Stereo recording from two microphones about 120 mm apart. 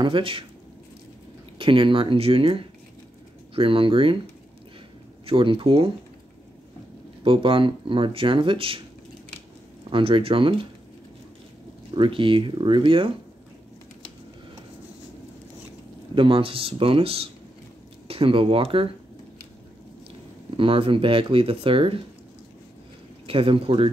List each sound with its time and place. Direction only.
0.0 s speech: 45° right (ahead or behind)
1.6 s speech: 45° right (ahead or behind)
5.2 s speech: 45° right (ahead or behind)
7.2 s speech: 50° right (ahead or behind)
9.8 s speech: 45° right (ahead or behind)
11.9 s speech: 45° right (ahead or behind)
16.2 s speech: 50° right (ahead or behind)
20.5 s speech: 45° right (ahead or behind)
23.2 s speech: 50° right (ahead or behind)